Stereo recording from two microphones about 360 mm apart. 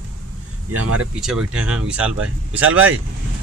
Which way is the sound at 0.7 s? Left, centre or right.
Right.